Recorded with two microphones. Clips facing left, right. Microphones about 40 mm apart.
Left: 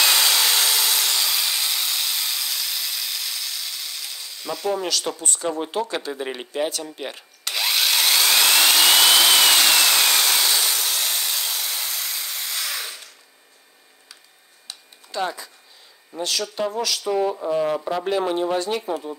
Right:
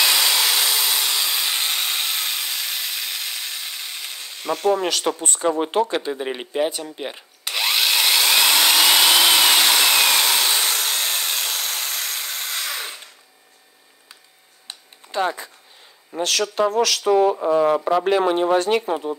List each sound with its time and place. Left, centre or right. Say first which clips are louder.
0.0 s sawing: even; centre; by 5.9 s right
5.9 s speech: right 4 dB; centre
6.1 s drill: right 3 dB; centre
9.8 s wood: right 2 dB; centre
10.6 s a sound: right 2 dB; right
14.7 s a sound: right 3 dB; right
16.2 s speech: right 5 dB; right